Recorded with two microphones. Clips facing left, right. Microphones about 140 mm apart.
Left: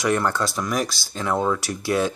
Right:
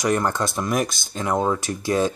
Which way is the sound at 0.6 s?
50° right (ahead or behind).